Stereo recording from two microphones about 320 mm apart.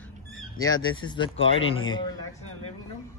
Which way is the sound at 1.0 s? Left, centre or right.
Centre.